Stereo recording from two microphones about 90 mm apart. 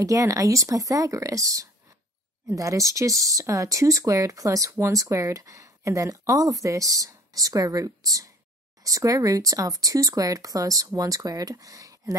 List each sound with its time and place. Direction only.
0.0 s speech: 35° right (ahead or behind)